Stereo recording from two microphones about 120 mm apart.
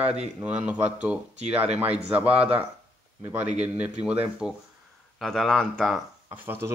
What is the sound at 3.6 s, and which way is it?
Speech, 10° right (ahead or behind).